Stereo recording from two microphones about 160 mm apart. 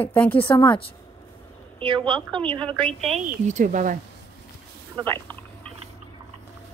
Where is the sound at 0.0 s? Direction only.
10° left (ahead or behind).